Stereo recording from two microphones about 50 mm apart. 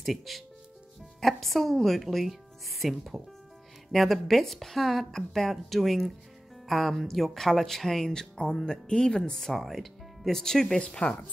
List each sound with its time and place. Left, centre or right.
0.0 s a woman's voice: centre
9.5 s speech: centre